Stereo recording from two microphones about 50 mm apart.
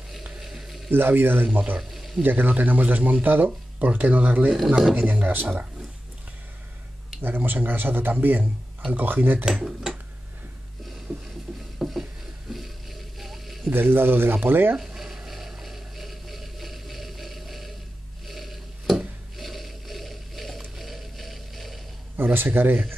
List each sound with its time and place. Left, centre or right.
0.4 s a sound: centre
0.9 s speech: right
1.8 s a sound: centre
2.2 s speech: right
4.5 s speech: centre
4.9 s speech: right
7.2 s speech: right
9.4 s speech: centre
11.1 s speech: right
11.8 s a sound: centre
13.7 s speech: right
14.8 s a sound: centre
22.1 s speech: right